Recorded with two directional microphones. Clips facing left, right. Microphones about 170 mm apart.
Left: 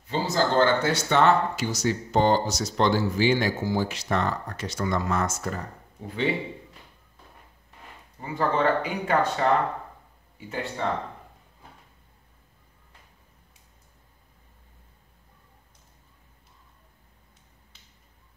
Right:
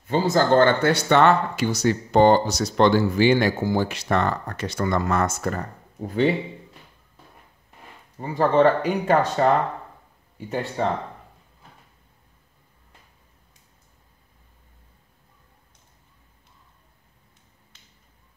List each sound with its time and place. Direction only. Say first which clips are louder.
0.1 s speech: right 6 dB; 55° right (ahead or behind)
8.2 s speech: right 7 dB; 35° right (ahead or behind)